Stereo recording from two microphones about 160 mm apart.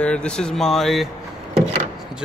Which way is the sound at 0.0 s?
5° left (ahead or behind).